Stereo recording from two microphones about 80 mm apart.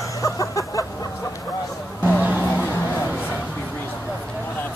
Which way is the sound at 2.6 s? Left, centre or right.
Left.